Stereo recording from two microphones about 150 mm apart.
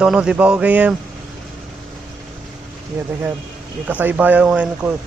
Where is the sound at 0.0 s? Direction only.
5° right (ahead or behind).